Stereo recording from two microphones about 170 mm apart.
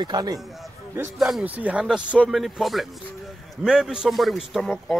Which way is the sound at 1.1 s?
Centre (ahead or behind).